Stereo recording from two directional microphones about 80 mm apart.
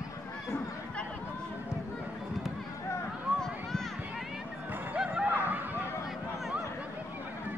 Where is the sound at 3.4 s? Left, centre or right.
Centre.